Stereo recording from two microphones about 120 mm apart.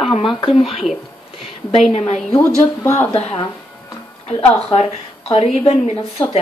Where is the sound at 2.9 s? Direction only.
20° left (ahead or behind).